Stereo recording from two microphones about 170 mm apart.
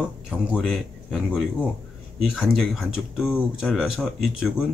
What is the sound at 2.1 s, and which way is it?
Speech, centre (ahead or behind).